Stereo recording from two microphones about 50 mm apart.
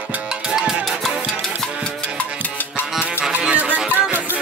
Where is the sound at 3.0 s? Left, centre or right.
Right.